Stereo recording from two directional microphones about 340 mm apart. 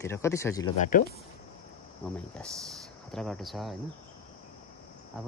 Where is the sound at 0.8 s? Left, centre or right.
Left.